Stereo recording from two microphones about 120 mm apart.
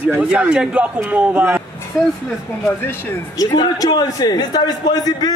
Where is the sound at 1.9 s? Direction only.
Centre (ahead or behind).